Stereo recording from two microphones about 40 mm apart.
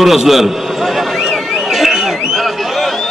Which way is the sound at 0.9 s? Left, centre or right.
Centre.